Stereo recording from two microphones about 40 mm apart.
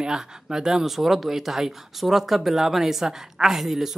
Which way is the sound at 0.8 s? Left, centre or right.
Centre.